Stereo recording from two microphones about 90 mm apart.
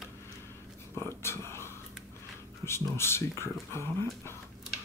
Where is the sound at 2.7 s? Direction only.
30° left (ahead or behind).